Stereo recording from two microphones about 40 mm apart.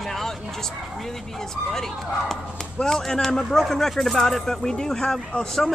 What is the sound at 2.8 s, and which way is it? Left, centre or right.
Speech, centre.